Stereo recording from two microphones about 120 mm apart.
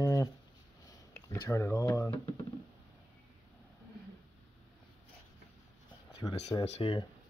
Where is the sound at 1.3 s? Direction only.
25° left (ahead or behind).